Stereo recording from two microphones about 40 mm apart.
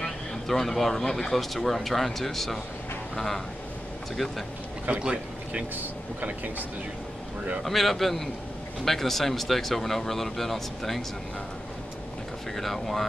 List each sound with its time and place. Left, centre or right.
0.5 s speech: centre
5.0 s speech: right
7.6 s speech: centre
12.5 s speech: centre